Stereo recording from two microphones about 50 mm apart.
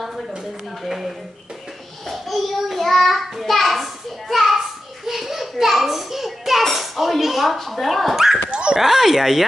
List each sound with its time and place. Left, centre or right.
0.8 s a child's voice: centre
8.5 s dog: centre
8.7 s speech: centre